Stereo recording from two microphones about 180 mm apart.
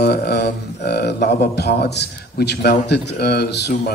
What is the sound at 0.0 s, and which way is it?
Speech, 65° left (ahead or behind).